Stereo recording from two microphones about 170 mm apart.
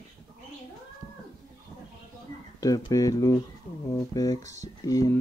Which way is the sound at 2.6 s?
20° left (ahead or behind).